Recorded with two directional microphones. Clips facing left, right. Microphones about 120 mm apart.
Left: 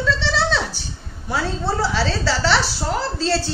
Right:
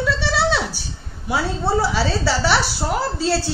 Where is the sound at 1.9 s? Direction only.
15° right (ahead or behind).